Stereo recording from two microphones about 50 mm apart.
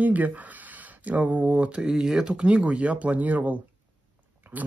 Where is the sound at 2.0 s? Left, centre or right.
Centre; by 3.5 s right.